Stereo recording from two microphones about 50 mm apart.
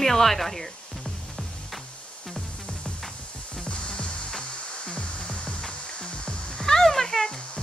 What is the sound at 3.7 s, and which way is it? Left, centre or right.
Music, centre.